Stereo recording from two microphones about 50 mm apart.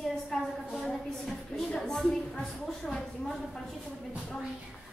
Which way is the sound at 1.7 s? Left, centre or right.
Centre.